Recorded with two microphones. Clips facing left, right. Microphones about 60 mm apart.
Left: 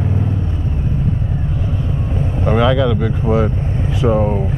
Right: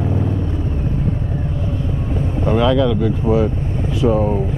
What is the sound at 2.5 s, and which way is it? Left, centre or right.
Speech, centre.